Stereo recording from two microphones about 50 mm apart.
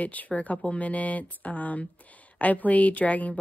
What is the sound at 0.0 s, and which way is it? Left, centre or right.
Speech, left.